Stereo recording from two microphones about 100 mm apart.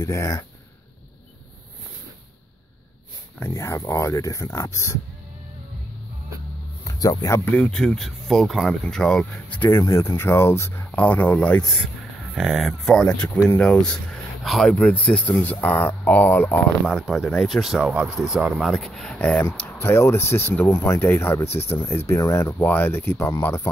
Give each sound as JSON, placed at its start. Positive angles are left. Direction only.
{"t": 0.0, "sound": "speech", "side_deg": 30}
{"t": 3.3, "sound": "speech", "side_deg": 25}
{"t": 6.8, "sound": "a sound", "side_deg": 35}
{"t": 7.3, "sound": "speech", "side_deg": 15}
{"t": 9.8, "sound": "speech", "side_deg": 40}
{"t": 12.4, "sound": "speech", "side_deg": -5}
{"t": 14.7, "sound": "speech", "side_deg": 15}
{"t": 16.9, "sound": "speech", "side_deg": 0}
{"t": 22.6, "sound": "speech", "side_deg": 20}